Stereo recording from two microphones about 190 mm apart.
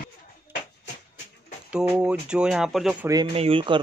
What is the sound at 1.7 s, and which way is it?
Speech, 5° right (ahead or behind).